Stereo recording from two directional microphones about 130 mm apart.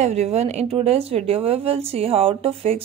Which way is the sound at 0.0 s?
55° right (ahead or behind).